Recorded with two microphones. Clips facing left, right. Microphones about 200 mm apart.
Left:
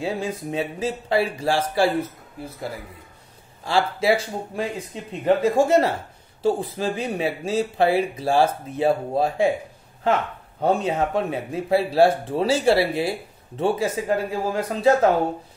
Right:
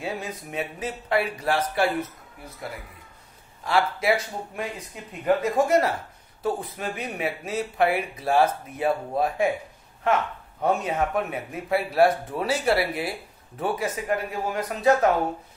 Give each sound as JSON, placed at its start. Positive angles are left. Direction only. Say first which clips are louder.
{"t": 0.0, "sound": "speech", "louder": "left 6 dB", "side_deg": 30}
{"t": 10.6, "sound": "speech", "louder": "left 3 dB", "side_deg": 30}